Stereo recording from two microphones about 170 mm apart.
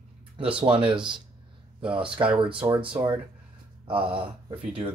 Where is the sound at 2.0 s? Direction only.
30° right (ahead or behind).